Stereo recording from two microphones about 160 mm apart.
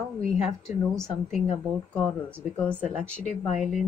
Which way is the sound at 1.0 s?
Centre (ahead or behind).